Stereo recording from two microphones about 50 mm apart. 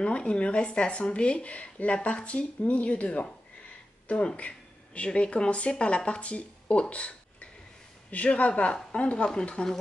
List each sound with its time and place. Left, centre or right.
0.0 s speech: left